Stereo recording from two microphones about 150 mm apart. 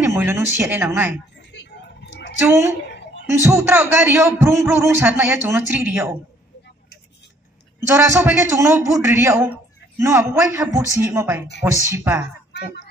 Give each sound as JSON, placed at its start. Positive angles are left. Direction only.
{"t": 0.0, "sound": "a man's voice", "side_deg": -15}
{"t": 3.4, "sound": "a man's voice", "side_deg": -15}
{"t": 7.9, "sound": "a man's voice", "side_deg": -15}